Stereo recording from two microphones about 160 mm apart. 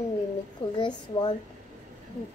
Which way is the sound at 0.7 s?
30° left (ahead or behind).